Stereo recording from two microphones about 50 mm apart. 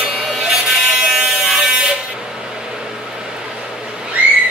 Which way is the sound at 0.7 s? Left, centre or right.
Centre.